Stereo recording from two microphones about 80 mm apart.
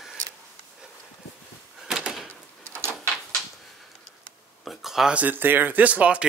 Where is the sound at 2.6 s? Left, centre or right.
Right.